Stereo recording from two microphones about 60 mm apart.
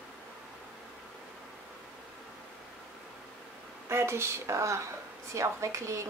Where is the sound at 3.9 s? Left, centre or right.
Right.